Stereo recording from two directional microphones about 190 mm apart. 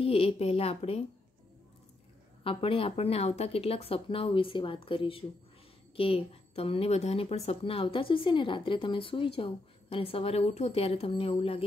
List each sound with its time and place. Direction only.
0.0 s a woman's voice: 30° left (ahead or behind)
2.4 s speech: 30° left (ahead or behind)